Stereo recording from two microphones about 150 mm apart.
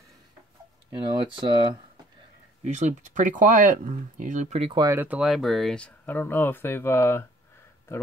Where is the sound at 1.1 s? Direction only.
30° right (ahead or behind).